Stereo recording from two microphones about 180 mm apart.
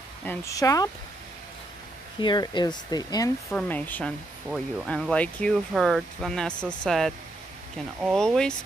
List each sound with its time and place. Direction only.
0.2 s speech: 15° left (ahead or behind)
2.1 s speech: 25° left (ahead or behind)
3.4 s speech: 10° left (ahead or behind)